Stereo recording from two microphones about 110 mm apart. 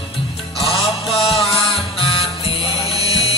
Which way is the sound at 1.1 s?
65° left (ahead or behind).